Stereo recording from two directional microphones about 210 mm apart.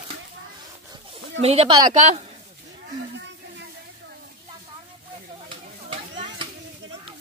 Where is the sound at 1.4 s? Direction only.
30° right (ahead or behind).